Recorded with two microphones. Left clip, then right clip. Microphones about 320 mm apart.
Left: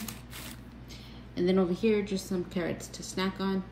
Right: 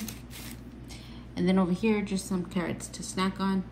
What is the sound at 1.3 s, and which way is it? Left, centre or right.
A woman's voice, right.